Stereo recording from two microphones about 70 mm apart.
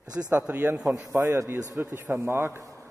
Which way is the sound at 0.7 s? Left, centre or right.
Right.